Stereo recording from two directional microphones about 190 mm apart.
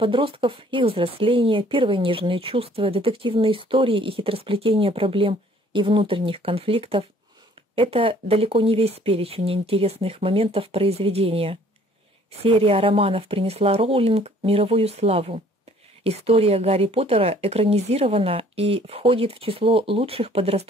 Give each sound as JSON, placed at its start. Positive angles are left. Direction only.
{"t": 0.0, "sound": "speech", "side_deg": -25}